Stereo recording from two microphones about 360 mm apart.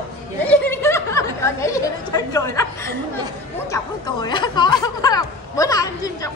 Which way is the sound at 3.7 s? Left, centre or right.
Centre.